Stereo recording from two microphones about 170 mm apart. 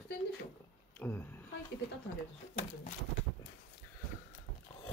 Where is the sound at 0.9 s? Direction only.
10° left (ahead or behind).